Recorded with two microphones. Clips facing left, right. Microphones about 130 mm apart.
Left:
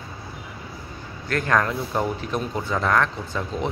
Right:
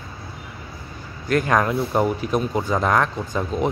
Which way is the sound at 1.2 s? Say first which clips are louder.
Right 3 dB; 15° right (ahead or behind).